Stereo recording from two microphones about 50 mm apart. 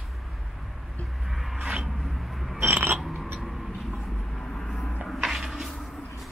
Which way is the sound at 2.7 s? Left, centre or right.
Right.